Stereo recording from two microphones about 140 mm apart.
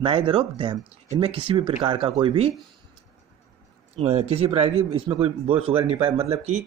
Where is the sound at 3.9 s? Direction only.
45° right (ahead or behind).